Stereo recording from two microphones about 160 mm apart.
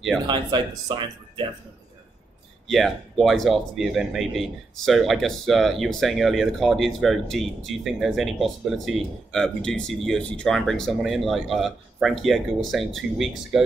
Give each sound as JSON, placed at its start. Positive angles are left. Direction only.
{"t": 0.3, "sound": "speech", "side_deg": -30}
{"t": 2.7, "sound": "speech", "side_deg": 0}